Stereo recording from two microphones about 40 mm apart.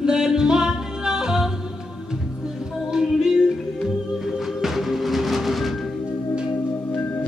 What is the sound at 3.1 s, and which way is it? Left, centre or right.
Music, centre.